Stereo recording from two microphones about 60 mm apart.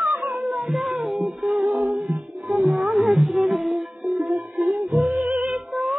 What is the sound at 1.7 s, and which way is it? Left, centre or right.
Music, centre.